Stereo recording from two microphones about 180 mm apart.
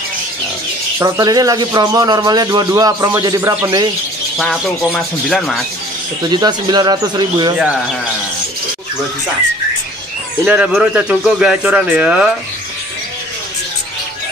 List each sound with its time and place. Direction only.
0.9 s speech: 15° right (ahead or behind)
4.4 s speech: centre (ahead or behind)
6.2 s speech: 25° right (ahead or behind)
10.4 s speech: 5° right (ahead or behind)